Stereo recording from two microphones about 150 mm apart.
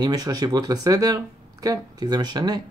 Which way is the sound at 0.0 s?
25° right (ahead or behind).